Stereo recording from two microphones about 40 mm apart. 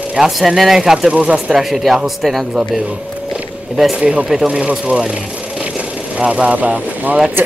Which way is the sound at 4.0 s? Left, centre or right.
Right.